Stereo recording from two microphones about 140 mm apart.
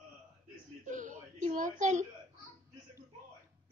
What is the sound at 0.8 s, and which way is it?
Whimper, 65° right (ahead or behind).